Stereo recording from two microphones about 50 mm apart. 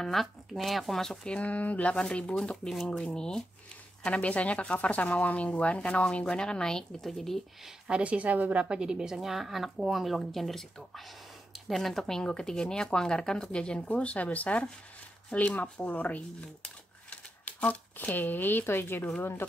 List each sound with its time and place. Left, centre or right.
0.0 s speech: centre
1.2 s speech: left
4.0 s speech: left; by 7.4 s centre
7.9 s a woman's voice: right; by 16.2 s left
16.2 s speech: left